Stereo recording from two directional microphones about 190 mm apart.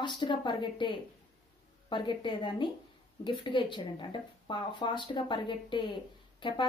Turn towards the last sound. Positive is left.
turn(degrees=25)  # may be behind; listen again after turning